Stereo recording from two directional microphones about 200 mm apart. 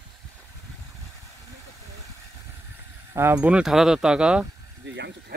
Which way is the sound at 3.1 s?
10° right (ahead or behind).